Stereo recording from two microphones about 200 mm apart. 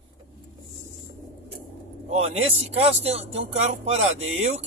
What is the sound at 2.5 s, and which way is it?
Speech, 30° right (ahead or behind).